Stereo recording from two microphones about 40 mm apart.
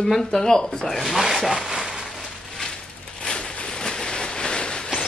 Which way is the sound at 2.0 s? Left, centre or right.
Centre.